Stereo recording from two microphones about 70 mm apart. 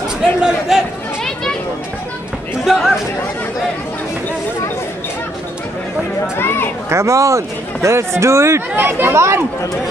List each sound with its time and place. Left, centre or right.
0.2 s a man's voice: centre
2.6 s speech: centre
6.3 s speech: left
6.9 s speech: right
9.1 s speech: right